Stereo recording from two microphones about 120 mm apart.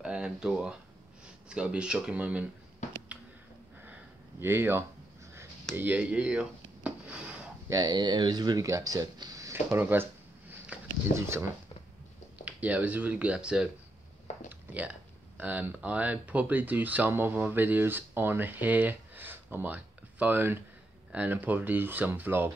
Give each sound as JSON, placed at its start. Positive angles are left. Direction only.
{"t": 0.0, "sound": "speech", "side_deg": -10}
{"t": 4.4, "sound": "speech", "side_deg": -20}
{"t": 5.8, "sound": "a sound", "side_deg": -10}
{"t": 7.7, "sound": "speech", "side_deg": -35}
{"t": 10.5, "sound": "a sound", "side_deg": -20}
{"t": 12.4, "sound": "speech", "side_deg": -10}
{"t": 14.7, "sound": "speech", "side_deg": -10}